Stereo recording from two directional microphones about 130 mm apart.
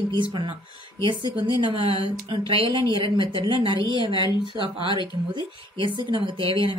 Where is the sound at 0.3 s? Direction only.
40° right (ahead or behind).